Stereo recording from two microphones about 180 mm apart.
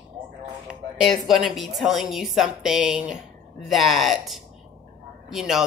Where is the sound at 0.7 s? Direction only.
Centre (ahead or behind).